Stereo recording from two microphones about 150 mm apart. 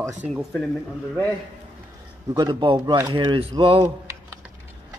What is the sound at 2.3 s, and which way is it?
Speech, 30° right (ahead or behind).